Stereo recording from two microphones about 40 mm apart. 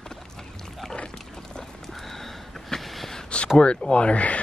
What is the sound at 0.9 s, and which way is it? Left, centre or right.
Dog, left.